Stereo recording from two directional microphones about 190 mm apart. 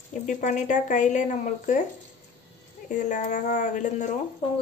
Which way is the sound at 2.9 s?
40° left (ahead or behind).